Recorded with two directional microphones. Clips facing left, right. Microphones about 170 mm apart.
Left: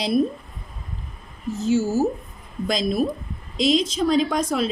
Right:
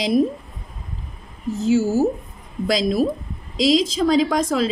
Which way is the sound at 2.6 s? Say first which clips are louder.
Right 3 dB; 90° right.